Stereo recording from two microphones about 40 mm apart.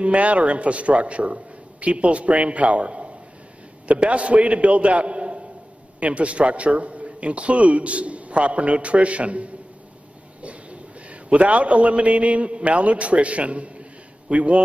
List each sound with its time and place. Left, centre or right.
0.0 s a man's voice: right